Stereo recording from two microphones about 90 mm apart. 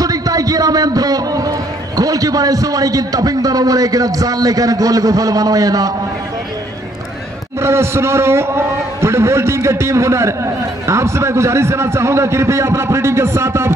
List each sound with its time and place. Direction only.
0.0 s speech: 40° right (ahead or behind)
7.6 s a man's voice: 30° right (ahead or behind)